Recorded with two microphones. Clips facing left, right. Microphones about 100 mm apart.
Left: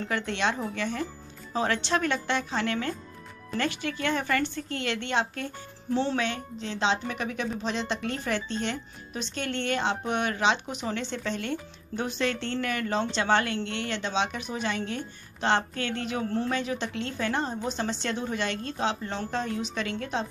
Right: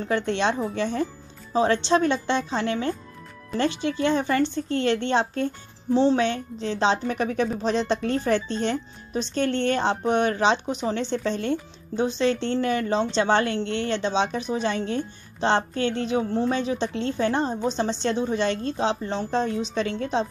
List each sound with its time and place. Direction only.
0.1 s a woman's voice: 30° right (ahead or behind)